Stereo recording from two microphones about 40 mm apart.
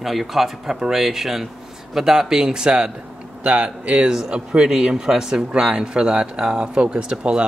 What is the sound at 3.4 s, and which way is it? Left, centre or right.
Speech, right.